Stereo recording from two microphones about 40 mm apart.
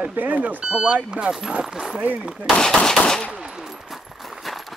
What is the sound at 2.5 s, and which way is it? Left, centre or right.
Speech, centre.